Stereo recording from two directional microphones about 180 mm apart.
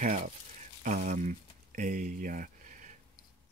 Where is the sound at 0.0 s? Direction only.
40° right (ahead or behind).